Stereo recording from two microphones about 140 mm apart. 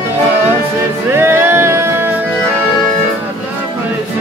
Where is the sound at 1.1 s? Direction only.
15° right (ahead or behind).